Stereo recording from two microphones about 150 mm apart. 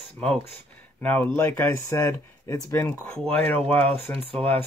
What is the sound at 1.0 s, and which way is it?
Speech, 10° left (ahead or behind).